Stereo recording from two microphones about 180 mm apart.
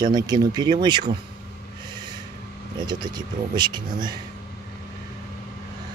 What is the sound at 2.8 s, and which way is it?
Speech, 25° right (ahead or behind).